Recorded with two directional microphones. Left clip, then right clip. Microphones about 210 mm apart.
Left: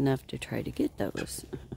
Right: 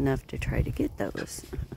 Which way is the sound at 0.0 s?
10° left (ahead or behind).